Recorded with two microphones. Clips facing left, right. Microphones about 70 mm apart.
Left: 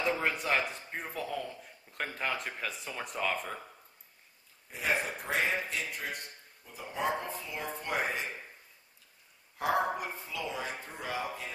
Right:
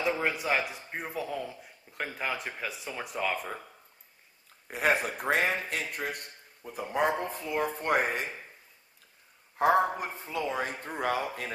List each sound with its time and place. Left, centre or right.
0.2 s a man's voice: centre
4.6 s a man's voice: right
9.6 s speech: right
10.2 s speech: right
10.9 s speech: right